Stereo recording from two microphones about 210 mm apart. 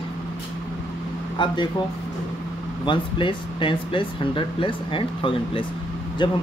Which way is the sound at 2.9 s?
25° left (ahead or behind).